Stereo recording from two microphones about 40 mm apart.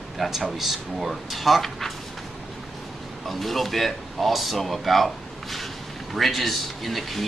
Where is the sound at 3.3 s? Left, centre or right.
Centre.